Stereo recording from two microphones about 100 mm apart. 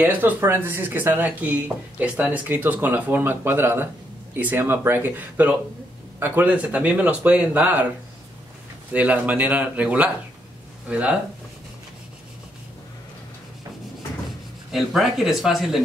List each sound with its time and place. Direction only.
0.0 s speech: 20° right (ahead or behind)
8.9 s speech: 15° right (ahead or behind)
14.7 s speech: centre (ahead or behind)